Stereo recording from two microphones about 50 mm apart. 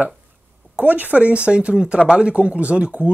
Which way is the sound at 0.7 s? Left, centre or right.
Right.